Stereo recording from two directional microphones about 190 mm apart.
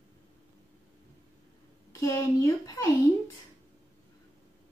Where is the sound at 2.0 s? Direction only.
15° left (ahead or behind).